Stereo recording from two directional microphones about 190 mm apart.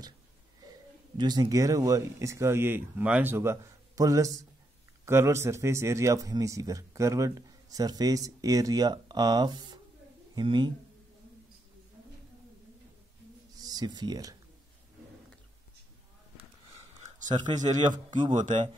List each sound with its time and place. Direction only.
1.1 s a man's voice: 20° right (ahead or behind)
13.6 s speech: 20° right (ahead or behind)
17.0 s speech: 40° right (ahead or behind)